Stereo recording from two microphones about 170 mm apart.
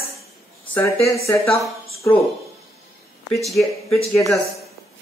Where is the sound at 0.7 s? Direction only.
20° left (ahead or behind).